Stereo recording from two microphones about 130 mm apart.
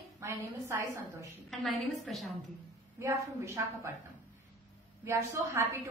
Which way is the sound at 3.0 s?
20° right (ahead or behind).